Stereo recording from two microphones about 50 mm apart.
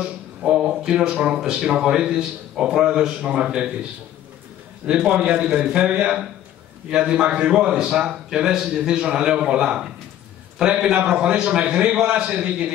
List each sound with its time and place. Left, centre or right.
0.0 s a man's voice: right
4.9 s a man's voice: right